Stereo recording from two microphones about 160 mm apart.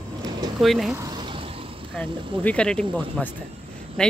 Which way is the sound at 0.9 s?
25° right (ahead or behind).